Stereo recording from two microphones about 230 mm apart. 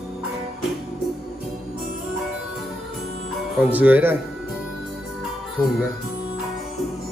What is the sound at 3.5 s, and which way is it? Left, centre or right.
Speech, centre.